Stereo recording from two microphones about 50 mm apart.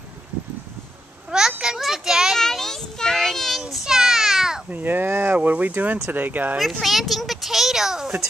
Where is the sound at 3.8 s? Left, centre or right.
Centre.